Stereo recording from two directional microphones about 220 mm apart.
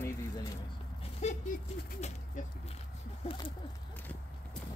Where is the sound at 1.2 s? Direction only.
30° left (ahead or behind).